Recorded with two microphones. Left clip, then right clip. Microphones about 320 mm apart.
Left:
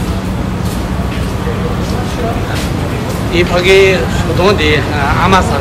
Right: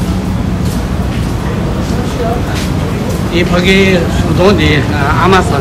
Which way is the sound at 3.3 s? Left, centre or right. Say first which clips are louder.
Left 2 dB; centre.